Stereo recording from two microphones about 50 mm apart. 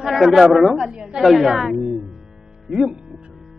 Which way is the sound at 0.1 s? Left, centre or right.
Centre.